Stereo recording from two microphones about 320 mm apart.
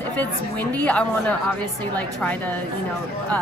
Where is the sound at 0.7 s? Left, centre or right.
Centre.